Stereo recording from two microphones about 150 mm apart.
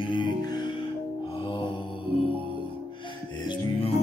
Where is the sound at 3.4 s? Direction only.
35° left (ahead or behind).